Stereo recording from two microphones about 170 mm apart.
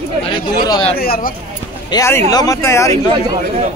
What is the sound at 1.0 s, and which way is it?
Speech, 60° left (ahead or behind).